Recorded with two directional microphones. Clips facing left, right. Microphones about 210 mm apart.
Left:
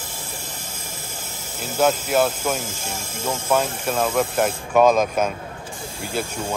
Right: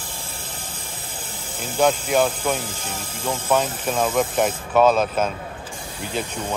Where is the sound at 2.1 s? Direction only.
5° left (ahead or behind).